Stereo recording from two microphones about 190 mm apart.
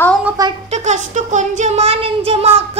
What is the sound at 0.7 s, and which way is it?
Child singing, 40° right (ahead or behind).